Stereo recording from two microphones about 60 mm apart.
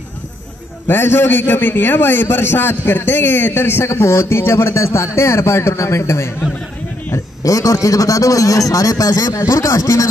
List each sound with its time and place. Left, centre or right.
0.8 s a man's voice: left
7.4 s a man's voice: left